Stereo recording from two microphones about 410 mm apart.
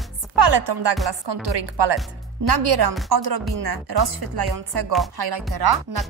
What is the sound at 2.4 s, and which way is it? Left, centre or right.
Music, right.